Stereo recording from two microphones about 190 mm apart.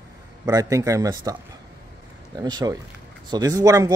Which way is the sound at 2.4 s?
20° right (ahead or behind).